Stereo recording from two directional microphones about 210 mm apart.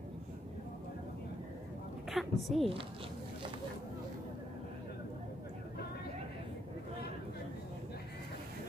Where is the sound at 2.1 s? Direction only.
Centre (ahead or behind).